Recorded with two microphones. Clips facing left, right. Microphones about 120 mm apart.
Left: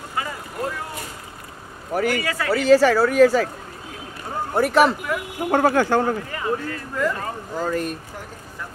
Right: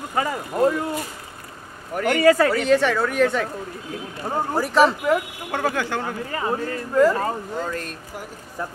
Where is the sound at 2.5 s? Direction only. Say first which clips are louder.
Left 4 dB; centre (ahead or behind).